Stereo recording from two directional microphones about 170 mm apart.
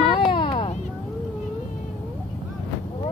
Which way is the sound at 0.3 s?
30° left (ahead or behind).